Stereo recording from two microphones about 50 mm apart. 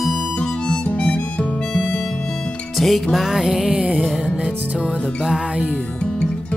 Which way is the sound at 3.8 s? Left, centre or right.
Right.